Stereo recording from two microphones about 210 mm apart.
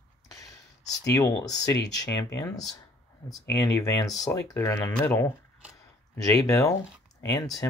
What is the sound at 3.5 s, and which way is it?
Speech, 15° left (ahead or behind).